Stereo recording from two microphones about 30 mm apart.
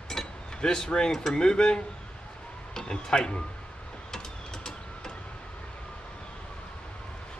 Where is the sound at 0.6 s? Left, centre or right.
Left.